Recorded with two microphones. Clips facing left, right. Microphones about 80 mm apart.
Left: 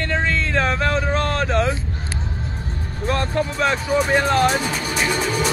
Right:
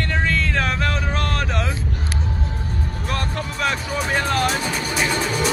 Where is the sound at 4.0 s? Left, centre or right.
Centre.